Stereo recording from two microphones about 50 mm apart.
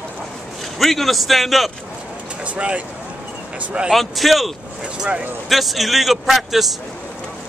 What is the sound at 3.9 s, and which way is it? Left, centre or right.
Speech, centre.